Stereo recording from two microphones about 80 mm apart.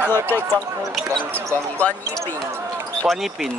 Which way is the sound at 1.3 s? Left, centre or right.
Right.